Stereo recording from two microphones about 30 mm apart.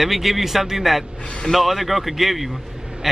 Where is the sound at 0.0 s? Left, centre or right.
Centre.